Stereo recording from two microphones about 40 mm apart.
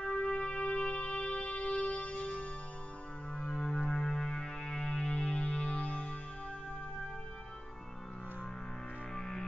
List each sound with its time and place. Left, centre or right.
0.0 s music: left
9.1 s music: centre